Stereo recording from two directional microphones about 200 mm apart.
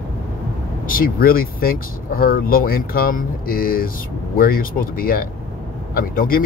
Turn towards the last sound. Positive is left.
turn(degrees=45)  # may be behind; listen again after turning